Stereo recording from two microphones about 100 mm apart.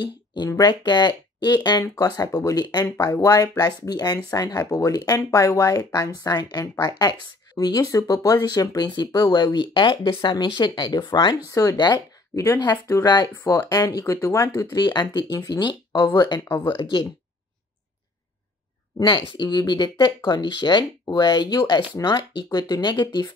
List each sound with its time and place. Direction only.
0.0 s speech: 45° left (ahead or behind)
11.7 s speech: 50° left (ahead or behind)
13.0 s speech: 45° left (ahead or behind)
13.4 s speech: 35° left (ahead or behind)
16.6 s speech: 55° left (ahead or behind)
19.0 s speech: 50° left (ahead or behind)